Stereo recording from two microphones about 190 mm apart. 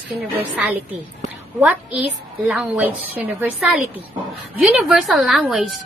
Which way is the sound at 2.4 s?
5° right (ahead or behind).